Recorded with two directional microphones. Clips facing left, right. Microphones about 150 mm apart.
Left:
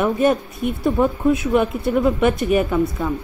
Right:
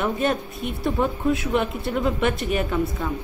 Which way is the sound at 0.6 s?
50° left (ahead or behind).